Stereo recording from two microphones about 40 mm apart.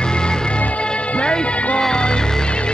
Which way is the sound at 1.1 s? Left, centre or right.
Left.